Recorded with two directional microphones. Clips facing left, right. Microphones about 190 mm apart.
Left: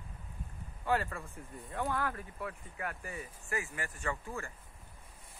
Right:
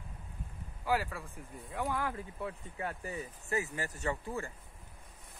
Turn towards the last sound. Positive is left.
turn(degrees=-20)  # may be behind; listen again after turning